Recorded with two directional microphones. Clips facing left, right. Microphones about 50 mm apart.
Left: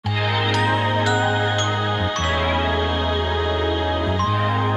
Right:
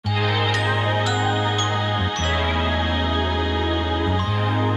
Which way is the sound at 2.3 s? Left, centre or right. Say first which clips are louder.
Left 2 dB; centre.